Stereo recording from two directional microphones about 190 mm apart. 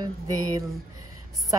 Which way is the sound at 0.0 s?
20° right (ahead or behind).